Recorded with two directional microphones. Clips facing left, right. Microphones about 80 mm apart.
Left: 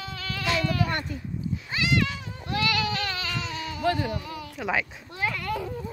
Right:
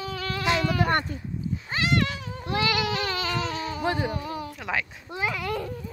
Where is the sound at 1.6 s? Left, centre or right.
Right.